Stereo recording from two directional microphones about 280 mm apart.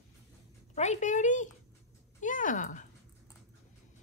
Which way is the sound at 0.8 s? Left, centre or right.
Left.